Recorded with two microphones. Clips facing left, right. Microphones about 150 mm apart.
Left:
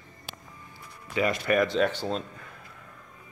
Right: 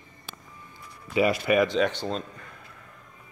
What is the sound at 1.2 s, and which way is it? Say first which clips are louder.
A man's voice: right 3 dB; 10° right (ahead or behind).